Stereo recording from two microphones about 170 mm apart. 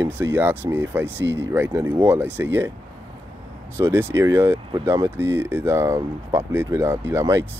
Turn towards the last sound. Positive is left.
turn(degrees=-15)  # may be behind; listen again after turning